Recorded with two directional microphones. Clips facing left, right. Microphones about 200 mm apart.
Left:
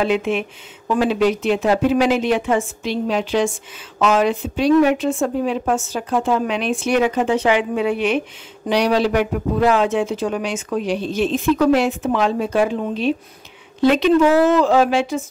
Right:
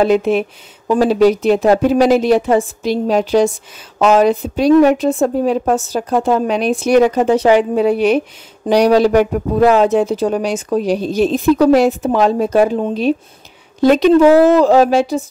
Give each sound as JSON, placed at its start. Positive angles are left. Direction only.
{"t": 0.0, "sound": "speech", "side_deg": -40}